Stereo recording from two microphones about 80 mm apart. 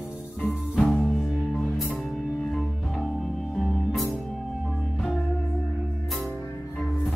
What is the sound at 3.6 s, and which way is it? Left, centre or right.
Music, centre.